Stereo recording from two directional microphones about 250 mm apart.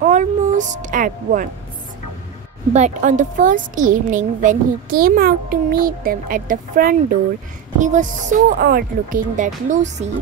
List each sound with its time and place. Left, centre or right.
0.0 s a woman's voice: right
2.7 s a woman's voice: right